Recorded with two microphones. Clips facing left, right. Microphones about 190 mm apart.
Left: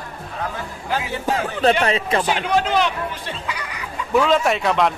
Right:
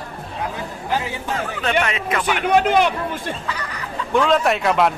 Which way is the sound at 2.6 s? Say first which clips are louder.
Right 3 dB; 50° right (ahead or behind).